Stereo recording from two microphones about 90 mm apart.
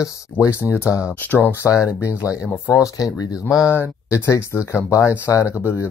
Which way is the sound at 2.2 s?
40° left (ahead or behind).